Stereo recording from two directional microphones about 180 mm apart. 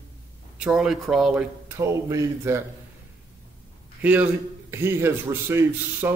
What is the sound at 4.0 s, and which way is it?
A man's voice, 10° right (ahead or behind).